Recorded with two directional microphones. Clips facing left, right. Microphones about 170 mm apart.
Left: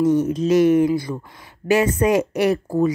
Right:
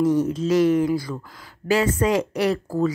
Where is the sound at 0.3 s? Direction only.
20° left (ahead or behind).